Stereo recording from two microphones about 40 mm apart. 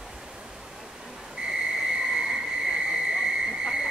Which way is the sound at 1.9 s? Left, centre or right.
Centre.